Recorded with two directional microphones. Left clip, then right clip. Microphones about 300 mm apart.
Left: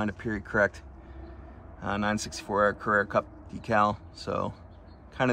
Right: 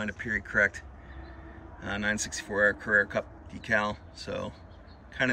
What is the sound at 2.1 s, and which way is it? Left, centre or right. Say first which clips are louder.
Speech: even; centre.